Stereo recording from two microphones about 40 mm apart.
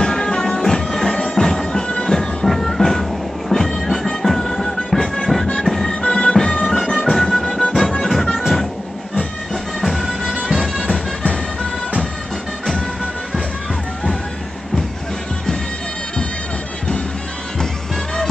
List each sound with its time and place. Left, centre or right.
0.0 s music: centre
6.0 s music: centre
9.8 s music: centre